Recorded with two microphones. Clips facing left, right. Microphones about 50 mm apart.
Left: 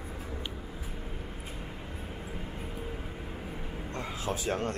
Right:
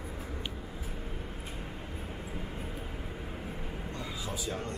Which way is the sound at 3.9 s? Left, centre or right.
Left.